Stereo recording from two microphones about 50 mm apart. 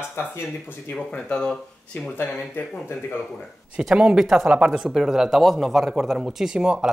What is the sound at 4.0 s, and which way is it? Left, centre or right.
Speech, centre.